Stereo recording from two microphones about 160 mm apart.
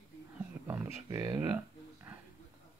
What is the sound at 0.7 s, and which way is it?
Speech, 20° right (ahead or behind).